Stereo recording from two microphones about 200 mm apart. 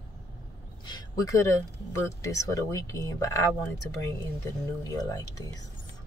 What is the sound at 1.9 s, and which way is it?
Speech, 15° left (ahead or behind).